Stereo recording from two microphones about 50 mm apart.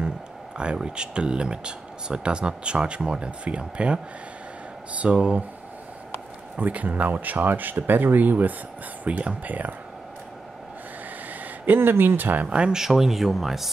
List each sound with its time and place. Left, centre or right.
0.8 s speech: centre
6.6 s speech: right
11.6 s speech: right
12.4 s speech: centre
12.8 s speech: centre